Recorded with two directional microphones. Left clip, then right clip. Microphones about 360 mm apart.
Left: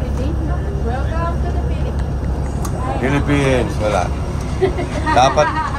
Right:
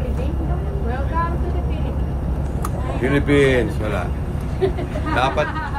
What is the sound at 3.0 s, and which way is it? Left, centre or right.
Speech, centre.